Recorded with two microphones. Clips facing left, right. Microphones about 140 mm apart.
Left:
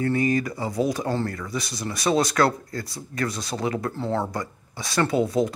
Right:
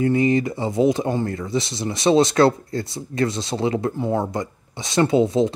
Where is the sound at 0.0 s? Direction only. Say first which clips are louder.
Right 4 dB; 20° right (ahead or behind).